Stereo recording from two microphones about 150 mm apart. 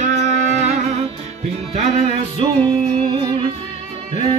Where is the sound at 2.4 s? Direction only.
30° right (ahead or behind).